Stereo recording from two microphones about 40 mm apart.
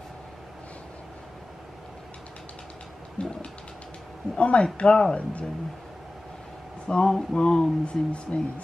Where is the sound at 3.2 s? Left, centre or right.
Left.